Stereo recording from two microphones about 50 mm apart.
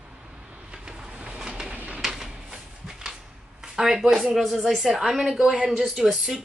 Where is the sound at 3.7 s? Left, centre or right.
Centre.